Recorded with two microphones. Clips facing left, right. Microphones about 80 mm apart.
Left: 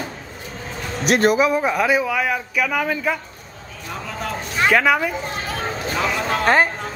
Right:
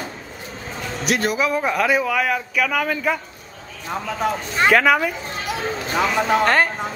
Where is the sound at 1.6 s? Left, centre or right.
Centre.